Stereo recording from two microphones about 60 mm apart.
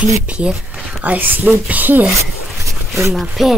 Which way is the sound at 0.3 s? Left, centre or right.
Centre.